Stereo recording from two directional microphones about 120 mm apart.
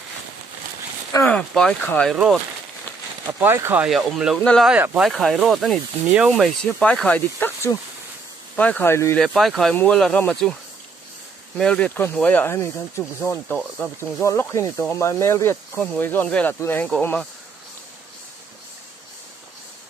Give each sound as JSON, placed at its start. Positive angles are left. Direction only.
{"t": 1.2, "sound": "speech", "side_deg": 5}
{"t": 2.1, "sound": "speech", "side_deg": -5}
{"t": 3.3, "sound": "speech", "side_deg": -20}
{"t": 3.8, "sound": "speech", "side_deg": -5}
{"t": 4.4, "sound": "speech", "side_deg": 10}
{"t": 4.6, "sound": "speech", "side_deg": -10}
{"t": 5.0, "sound": "speech", "side_deg": 0}
{"t": 9.2, "sound": "speech", "side_deg": 0}
{"t": 11.5, "sound": "speech", "side_deg": 5}